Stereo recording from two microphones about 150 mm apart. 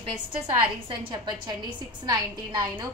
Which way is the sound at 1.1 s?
30° right (ahead or behind).